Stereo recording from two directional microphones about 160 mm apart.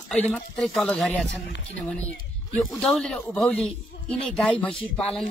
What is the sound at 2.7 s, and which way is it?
Speech, 5° left (ahead or behind).